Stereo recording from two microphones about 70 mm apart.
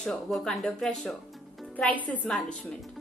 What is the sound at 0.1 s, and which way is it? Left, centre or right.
A woman's voice, centre.